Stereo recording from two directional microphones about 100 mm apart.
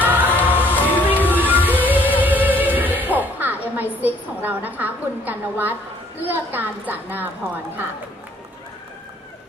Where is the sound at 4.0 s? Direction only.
15° right (ahead or behind).